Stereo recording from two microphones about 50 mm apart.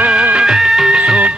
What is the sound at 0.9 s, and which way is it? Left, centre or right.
Music, centre.